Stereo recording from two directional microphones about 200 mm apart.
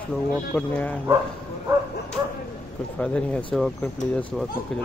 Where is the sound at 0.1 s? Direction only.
5° left (ahead or behind).